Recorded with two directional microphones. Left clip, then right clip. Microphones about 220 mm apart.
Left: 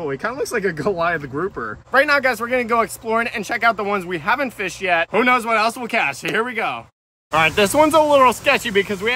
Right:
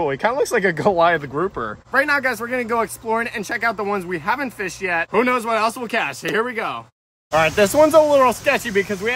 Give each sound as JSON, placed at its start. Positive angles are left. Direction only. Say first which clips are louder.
{"t": 0.0, "sound": "speech", "louder": "right 5 dB", "side_deg": -35}
{"t": 1.9, "sound": "speech", "louder": "left 3 dB", "side_deg": -5}